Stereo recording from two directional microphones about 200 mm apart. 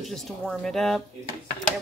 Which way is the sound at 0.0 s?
Centre (ahead or behind).